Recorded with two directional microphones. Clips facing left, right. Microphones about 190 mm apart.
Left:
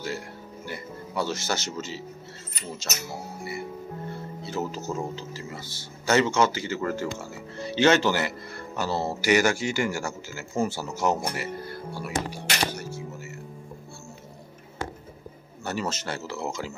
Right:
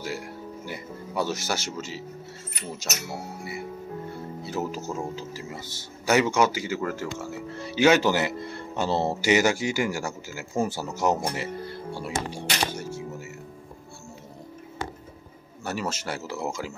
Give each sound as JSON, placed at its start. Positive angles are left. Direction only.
{"t": 0.7, "sound": "speech", "side_deg": -15}
{"t": 4.5, "sound": "speech", "side_deg": -10}
{"t": 11.2, "sound": "music", "side_deg": -25}
{"t": 15.6, "sound": "speech", "side_deg": -5}